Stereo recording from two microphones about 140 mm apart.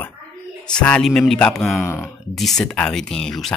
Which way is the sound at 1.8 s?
15° left (ahead or behind).